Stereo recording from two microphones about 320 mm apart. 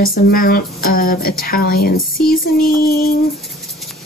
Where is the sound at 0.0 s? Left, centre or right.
Left.